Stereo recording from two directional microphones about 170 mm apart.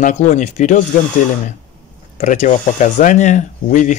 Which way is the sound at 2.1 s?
45° left (ahead or behind).